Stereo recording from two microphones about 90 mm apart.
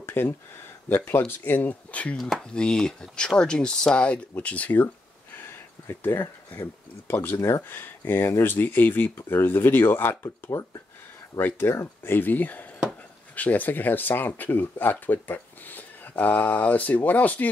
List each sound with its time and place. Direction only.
0.0 s a sound: 25° left (ahead or behind)
0.8 s speech: 25° left (ahead or behind)
2.1 s speech: centre (ahead or behind); by 17.5 s 20° left (ahead or behind)